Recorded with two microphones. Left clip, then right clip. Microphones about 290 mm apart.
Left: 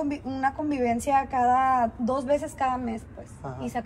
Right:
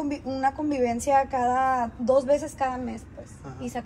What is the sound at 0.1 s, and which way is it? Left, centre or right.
A woman's voice, left.